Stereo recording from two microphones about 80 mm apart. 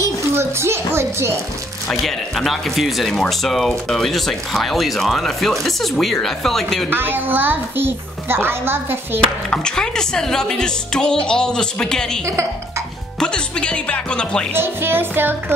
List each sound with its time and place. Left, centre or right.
0.3 s a child's voice: right
1.9 s speech: centre
6.9 s a child's voice: right
9.5 s speech: centre
13.2 s speech: centre
14.5 s a child's voice: right